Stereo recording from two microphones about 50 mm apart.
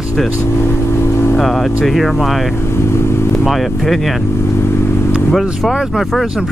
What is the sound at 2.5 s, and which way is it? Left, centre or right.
Speech, left.